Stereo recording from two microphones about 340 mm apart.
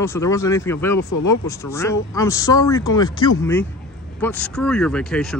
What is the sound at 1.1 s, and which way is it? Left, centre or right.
Speech, left.